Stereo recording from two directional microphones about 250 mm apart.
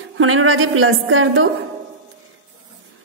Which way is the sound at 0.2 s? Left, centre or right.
Right.